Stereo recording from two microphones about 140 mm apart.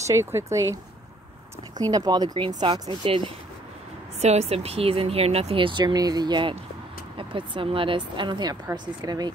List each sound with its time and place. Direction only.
0.0 s speech: 20° right (ahead or behind)
1.8 s speech: 25° right (ahead or behind)
4.2 s speech: 50° right (ahead or behind); by 9.3 s 30° right (ahead or behind)